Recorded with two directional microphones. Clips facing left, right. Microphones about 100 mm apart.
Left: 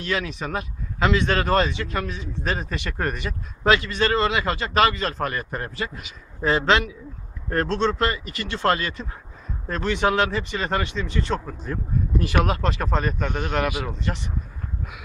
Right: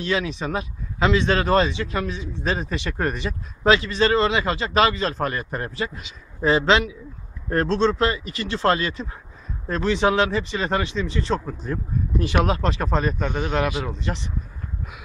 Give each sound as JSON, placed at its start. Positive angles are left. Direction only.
{"t": 0.0, "sound": "a man's voice", "side_deg": -20}